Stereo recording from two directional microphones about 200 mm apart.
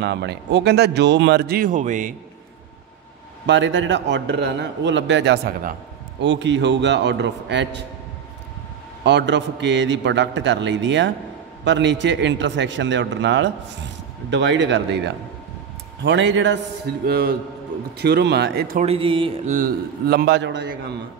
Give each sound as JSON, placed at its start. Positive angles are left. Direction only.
{"t": 0.0, "sound": "speech", "side_deg": -60}
{"t": 3.4, "sound": "speech", "side_deg": -65}
{"t": 6.2, "sound": "speech", "side_deg": -65}
{"t": 9.0, "sound": "speech", "side_deg": -60}
{"t": 18.9, "sound": "speech", "side_deg": -25}
{"t": 19.5, "sound": "speech", "side_deg": -45}